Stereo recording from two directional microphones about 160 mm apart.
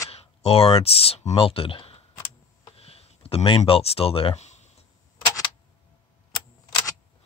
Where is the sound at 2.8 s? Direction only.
40° left (ahead or behind).